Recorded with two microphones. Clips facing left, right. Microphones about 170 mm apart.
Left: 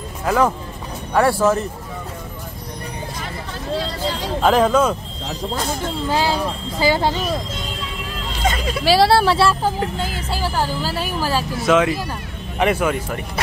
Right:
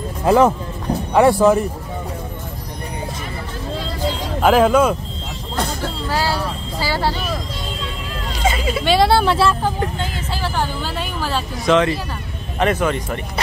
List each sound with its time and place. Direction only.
0.2 s speech: 25° right (ahead or behind)
4.4 s speech: 10° right (ahead or behind)
6.0 s speech: 20° left (ahead or behind)
8.5 s speech: 5° right (ahead or behind)